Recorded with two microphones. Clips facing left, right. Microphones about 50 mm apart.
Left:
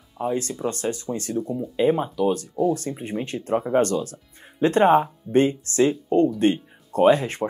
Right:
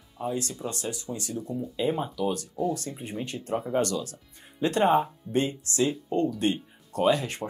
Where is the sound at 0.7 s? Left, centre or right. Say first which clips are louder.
Left 7 dB; left.